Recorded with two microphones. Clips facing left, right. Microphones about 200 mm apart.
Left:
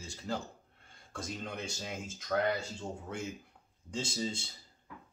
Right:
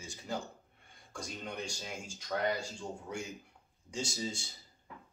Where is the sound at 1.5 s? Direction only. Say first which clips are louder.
Left 1 dB; centre (ahead or behind).